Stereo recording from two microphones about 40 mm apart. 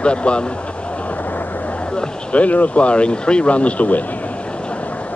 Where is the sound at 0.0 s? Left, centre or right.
Left.